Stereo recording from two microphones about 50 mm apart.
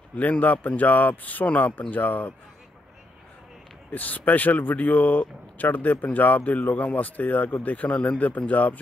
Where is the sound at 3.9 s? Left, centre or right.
Left.